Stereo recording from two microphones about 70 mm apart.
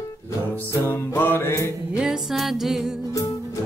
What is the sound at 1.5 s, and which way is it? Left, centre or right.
Music, left.